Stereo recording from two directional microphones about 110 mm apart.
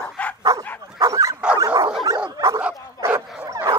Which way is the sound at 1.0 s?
30° right (ahead or behind).